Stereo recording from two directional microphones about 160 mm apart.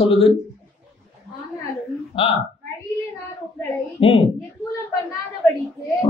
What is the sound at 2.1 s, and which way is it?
Speech, 35° left (ahead or behind).